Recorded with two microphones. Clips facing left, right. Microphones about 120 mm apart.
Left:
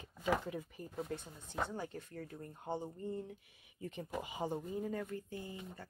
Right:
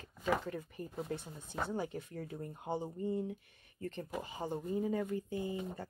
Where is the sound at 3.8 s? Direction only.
10° left (ahead or behind).